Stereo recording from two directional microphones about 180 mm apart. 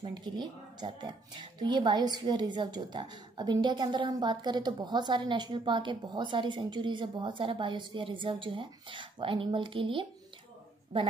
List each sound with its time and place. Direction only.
0.0 s speech: 25° right (ahead or behind)